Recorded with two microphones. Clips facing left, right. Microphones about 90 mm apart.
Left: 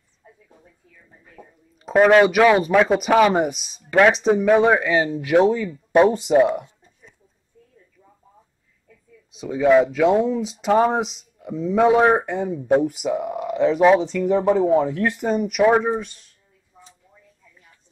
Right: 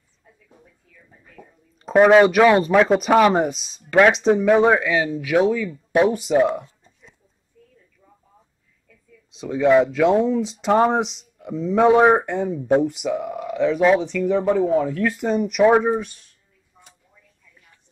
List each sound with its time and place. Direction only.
2.0 s speech: 5° right (ahead or behind)
5.4 s speech: 30° left (ahead or behind)
6.3 s speech: 10° left (ahead or behind)
9.4 s speech: 5° left (ahead or behind)
13.6 s speech: 15° left (ahead or behind); by 16.2 s centre (ahead or behind)